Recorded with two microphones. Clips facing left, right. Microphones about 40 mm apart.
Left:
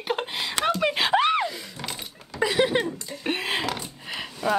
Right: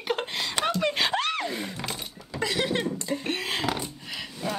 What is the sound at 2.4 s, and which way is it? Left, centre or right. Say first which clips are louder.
A woman's voice: left 5 dB; centre.